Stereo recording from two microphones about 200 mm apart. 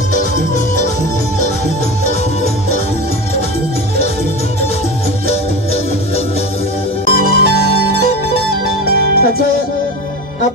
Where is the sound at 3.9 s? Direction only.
30° left (ahead or behind).